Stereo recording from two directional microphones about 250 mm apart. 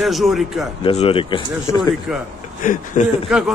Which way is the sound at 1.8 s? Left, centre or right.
Centre.